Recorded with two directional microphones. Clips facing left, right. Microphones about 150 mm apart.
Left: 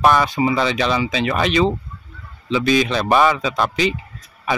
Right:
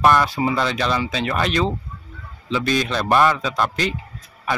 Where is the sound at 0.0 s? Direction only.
10° left (ahead or behind).